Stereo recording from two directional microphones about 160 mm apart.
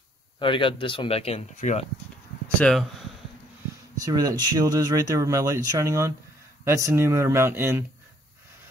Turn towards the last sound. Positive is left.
turn(degrees=-15)  # may be behind; listen again after turning